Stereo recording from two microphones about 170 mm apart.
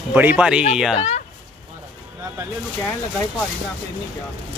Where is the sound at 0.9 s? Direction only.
40° left (ahead or behind).